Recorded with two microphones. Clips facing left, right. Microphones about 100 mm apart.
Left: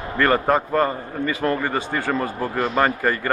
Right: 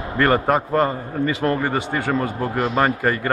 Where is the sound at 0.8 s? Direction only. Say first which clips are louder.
Right 1 dB; 20° right (ahead or behind).